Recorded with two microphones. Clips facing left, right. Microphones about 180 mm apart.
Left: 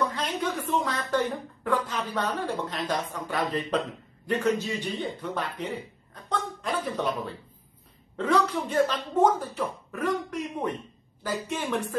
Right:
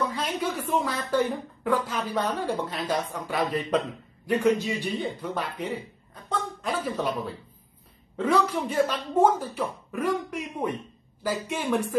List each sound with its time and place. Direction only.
0.1 s a woman's voice: 10° right (ahead or behind)
6.2 s a sound: 5° right (ahead or behind)
8.2 s a man's voice: 10° right (ahead or behind)